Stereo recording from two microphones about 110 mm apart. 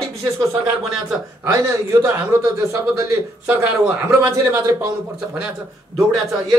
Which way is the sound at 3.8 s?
15° right (ahead or behind).